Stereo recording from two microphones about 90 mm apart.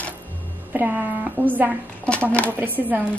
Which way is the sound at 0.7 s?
20° right (ahead or behind).